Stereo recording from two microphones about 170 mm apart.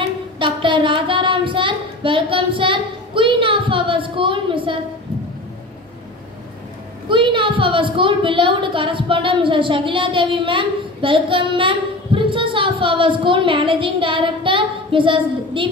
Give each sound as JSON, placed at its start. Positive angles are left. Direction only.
{"t": 0.4, "sound": "speech", "side_deg": -30}
{"t": 7.1, "sound": "a woman's voice", "side_deg": -30}